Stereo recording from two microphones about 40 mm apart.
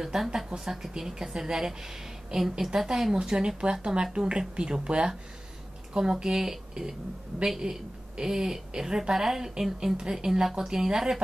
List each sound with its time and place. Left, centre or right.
0.0 s a woman's voice: centre